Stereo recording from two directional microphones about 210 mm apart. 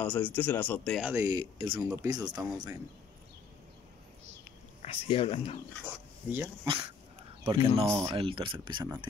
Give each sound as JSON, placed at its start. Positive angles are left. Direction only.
{"t": 0.0, "sound": "speech", "side_deg": 5}
{"t": 1.0, "sound": "speech", "side_deg": -10}
{"t": 4.8, "sound": "speech", "side_deg": 30}
{"t": 5.9, "sound": "speech", "side_deg": -10}
{"t": 7.5, "sound": "speech", "side_deg": -30}
{"t": 7.8, "sound": "speech", "side_deg": -15}
{"t": 8.1, "sound": "speech", "side_deg": -25}